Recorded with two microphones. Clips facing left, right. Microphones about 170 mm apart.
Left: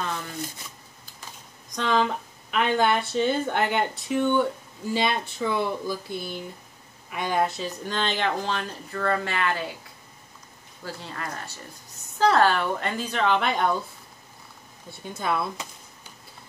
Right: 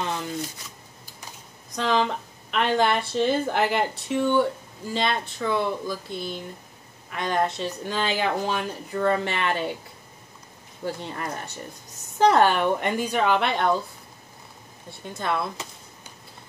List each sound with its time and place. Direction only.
1.8 s speech: centre (ahead or behind); by 9.8 s 25° right (ahead or behind)
10.8 s speech: 20° right (ahead or behind); by 13.7 s centre (ahead or behind)
14.9 s speech: centre (ahead or behind)